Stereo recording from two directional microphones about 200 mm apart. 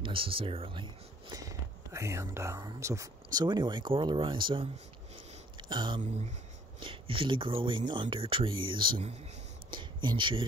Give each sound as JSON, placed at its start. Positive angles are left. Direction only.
{"t": 0.0, "sound": "speech", "side_deg": -25}
{"t": 5.1, "sound": "a sound", "side_deg": -20}
{"t": 6.8, "sound": "speech", "side_deg": -25}